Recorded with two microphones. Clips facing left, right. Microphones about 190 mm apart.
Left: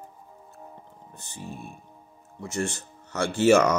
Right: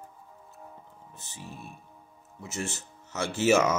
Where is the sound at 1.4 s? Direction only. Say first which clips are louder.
Left 5 dB; 30° left (ahead or behind).